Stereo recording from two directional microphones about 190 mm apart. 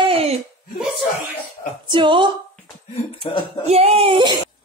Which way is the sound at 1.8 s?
25° right (ahead or behind).